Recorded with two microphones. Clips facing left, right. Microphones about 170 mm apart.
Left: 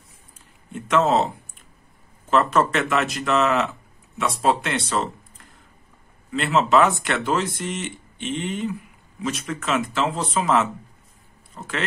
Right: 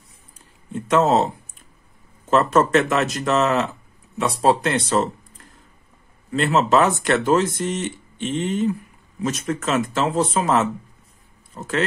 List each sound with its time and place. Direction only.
0.7 s speech: 40° right (ahead or behind)
2.3 s speech: 40° right (ahead or behind)